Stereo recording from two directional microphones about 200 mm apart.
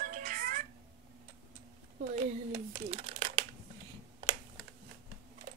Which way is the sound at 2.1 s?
30° right (ahead or behind).